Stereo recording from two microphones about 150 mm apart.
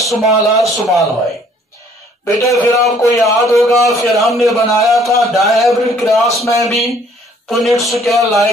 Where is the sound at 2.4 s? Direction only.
20° left (ahead or behind).